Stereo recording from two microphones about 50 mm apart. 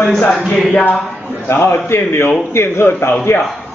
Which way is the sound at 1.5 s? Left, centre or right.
Left.